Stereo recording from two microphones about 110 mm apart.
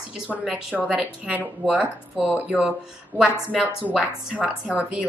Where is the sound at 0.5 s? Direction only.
10° right (ahead or behind).